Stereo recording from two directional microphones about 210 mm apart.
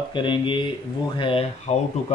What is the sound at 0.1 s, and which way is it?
Speech, 20° left (ahead or behind).